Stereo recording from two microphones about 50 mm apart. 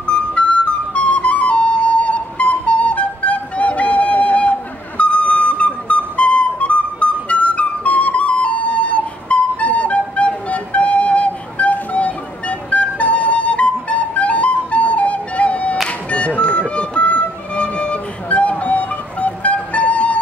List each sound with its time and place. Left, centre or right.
0.0 s flute: left
16.1 s music: left